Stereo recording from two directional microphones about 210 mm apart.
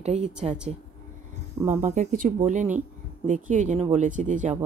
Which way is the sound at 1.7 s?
35° right (ahead or behind).